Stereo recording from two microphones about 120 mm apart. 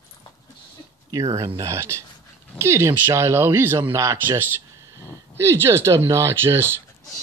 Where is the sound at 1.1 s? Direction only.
30° right (ahead or behind).